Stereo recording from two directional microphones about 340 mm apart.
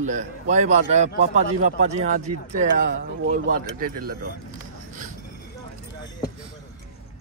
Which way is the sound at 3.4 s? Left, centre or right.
Right.